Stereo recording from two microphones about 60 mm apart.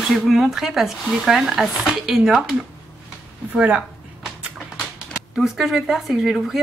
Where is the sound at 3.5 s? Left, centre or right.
Centre.